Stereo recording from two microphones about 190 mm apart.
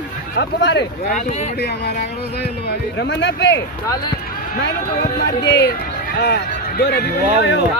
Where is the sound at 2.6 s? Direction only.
65° left (ahead or behind).